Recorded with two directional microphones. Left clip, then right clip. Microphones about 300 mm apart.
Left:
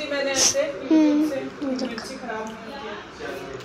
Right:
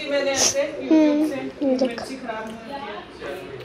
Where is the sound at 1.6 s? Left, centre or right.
Centre.